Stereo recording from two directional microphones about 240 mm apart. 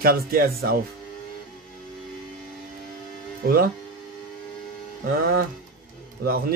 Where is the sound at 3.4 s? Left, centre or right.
Right.